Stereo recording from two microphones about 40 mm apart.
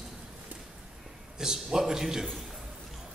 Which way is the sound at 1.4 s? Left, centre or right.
Centre.